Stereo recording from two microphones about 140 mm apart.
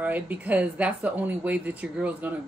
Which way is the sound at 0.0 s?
10° right (ahead or behind).